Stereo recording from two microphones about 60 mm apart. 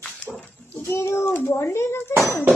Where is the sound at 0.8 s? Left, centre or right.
Left.